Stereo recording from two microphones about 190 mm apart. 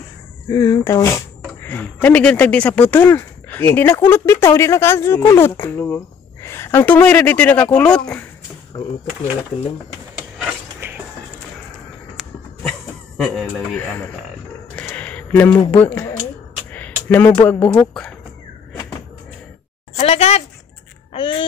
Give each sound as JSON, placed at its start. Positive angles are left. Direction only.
{"t": 0.5, "sound": "speech", "side_deg": 20}
{"t": 10.8, "sound": "music", "side_deg": -10}
{"t": 13.2, "sound": "speech", "side_deg": 5}
{"t": 14.8, "sound": "a sound", "side_deg": 10}
{"t": 15.7, "sound": "speech", "side_deg": 10}
{"t": 20.0, "sound": "speech", "side_deg": 30}